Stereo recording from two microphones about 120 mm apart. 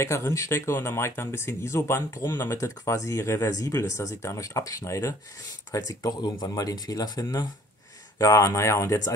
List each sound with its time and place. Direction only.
0.0 s speech: 25° left (ahead or behind)